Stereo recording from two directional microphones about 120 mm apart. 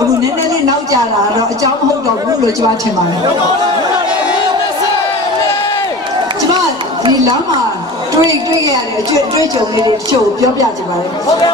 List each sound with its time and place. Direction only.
8.2 s a woman's voice: 30° right (ahead or behind)